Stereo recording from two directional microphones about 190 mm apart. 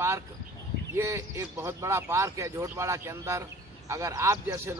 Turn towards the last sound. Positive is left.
turn(degrees=-15)  # may be behind; listen again after turning